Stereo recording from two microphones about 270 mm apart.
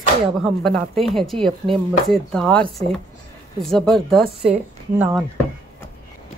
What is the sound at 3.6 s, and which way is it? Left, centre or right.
Speech, centre.